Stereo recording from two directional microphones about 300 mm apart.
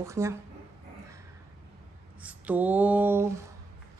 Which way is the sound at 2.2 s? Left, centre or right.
Centre.